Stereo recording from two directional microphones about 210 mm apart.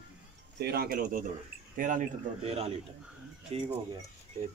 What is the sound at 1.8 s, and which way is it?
Speech, 35° right (ahead or behind).